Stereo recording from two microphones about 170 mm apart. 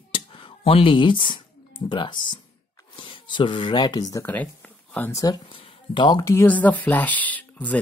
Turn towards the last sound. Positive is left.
turn(degrees=10)  # may be behind; listen again after turning